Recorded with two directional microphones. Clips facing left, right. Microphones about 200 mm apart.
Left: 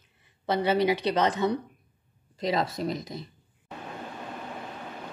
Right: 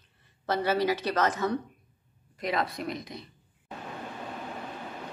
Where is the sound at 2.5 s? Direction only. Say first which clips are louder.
Left 3 dB; 35° left (ahead or behind).